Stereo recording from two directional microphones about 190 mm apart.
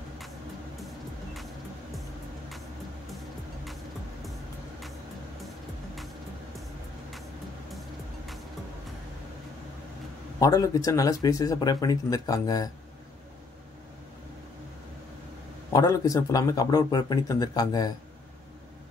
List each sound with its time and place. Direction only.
10.4 s speech: 20° left (ahead or behind)
15.7 s speech: 20° left (ahead or behind)